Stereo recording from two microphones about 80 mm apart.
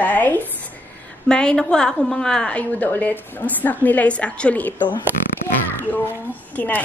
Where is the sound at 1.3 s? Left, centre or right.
Centre.